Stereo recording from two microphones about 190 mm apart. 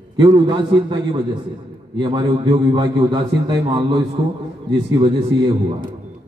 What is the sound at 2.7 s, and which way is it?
A man's voice, 25° right (ahead or behind).